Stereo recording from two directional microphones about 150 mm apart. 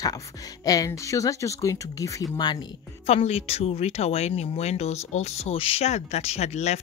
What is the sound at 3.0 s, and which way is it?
Speech, 45° left (ahead or behind).